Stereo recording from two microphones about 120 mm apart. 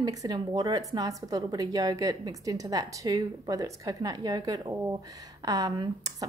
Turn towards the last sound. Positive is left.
turn(degrees=-30)  # may be behind; listen again after turning